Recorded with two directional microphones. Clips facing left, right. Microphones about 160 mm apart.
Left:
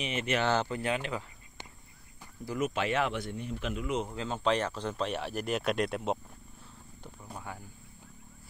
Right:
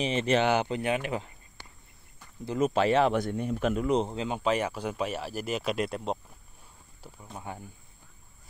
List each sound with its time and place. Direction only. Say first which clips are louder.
0.0 s speech: right 6 dB; 30° right (ahead or behind)
0.4 s speech: right 3 dB; 15° right (ahead or behind)
1.6 s a sound: left 3 dB; 20° left (ahead or behind)
2.4 s speech: right 5 dB; 25° right (ahead or behind)
2.7 s speech: right 9 dB; 35° right (ahead or behind)
3.2 s speech: right 8 dB; 50° right (ahead or behind)
4.1 s speech: right 2 dB; 20° right (ahead or behind); by 6.1 s centre (ahead or behind)
7.5 s speech: right 5 dB; 20° right (ahead or behind)